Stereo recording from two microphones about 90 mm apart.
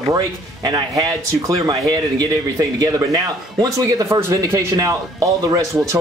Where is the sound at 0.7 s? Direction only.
50° right (ahead or behind).